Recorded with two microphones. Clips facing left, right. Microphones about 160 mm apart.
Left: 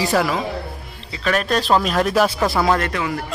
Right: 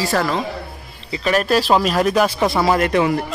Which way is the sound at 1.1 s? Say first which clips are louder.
Right 3 dB; 5° right (ahead or behind).